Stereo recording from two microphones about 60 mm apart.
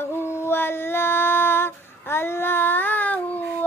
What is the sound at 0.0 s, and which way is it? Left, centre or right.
Female singing, left.